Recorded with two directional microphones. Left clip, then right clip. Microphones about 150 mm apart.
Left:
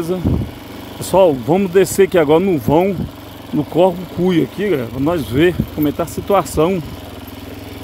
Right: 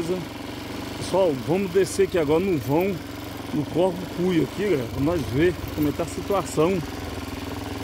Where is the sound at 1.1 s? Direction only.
35° left (ahead or behind).